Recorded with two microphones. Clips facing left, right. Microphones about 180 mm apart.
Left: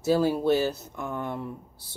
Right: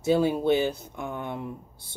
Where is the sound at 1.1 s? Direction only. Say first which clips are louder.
Left 2 dB; 20° right (ahead or behind).